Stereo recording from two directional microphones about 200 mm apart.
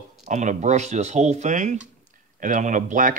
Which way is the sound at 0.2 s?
35° right (ahead or behind).